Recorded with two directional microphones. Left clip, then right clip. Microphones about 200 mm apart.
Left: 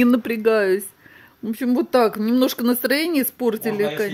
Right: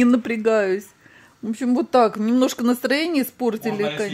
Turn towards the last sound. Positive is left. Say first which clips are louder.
# left 2 dB
turn(degrees=5)  # may be behind; listen again after turning